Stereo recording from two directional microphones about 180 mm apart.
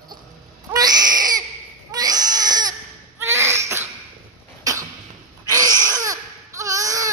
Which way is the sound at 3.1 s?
15° right (ahead or behind).